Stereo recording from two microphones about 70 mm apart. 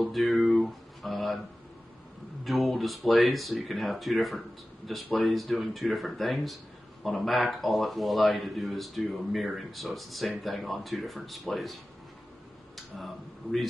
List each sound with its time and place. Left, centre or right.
0.0 s speech: centre
2.4 s speech: centre